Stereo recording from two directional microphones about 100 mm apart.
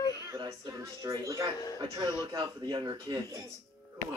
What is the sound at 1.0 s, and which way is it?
Speech, 35° right (ahead or behind).